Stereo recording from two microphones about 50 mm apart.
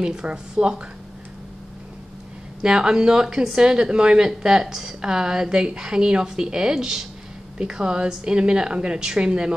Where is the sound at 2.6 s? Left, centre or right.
Centre.